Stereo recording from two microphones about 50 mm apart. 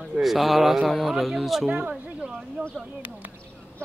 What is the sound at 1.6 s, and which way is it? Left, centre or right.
Speech, right.